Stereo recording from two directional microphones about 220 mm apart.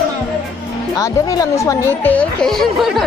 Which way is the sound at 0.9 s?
15° left (ahead or behind).